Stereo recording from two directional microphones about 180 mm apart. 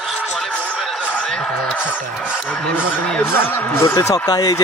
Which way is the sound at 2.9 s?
10° left (ahead or behind).